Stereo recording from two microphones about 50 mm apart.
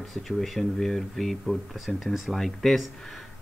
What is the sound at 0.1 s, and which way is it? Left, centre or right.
Speech, centre.